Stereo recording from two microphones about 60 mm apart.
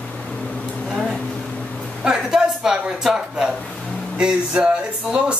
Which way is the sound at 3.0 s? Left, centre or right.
Centre.